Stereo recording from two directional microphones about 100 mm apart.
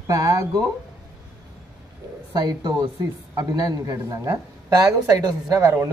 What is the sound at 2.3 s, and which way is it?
A woman's voice, 40° right (ahead or behind).